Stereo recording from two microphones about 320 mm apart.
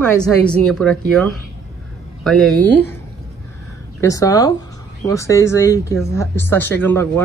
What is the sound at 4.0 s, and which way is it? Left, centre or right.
Speech, centre.